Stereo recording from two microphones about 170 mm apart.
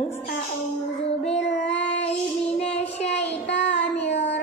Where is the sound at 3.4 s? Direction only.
90° left.